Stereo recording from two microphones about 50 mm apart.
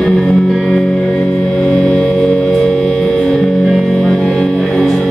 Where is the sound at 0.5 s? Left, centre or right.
Centre.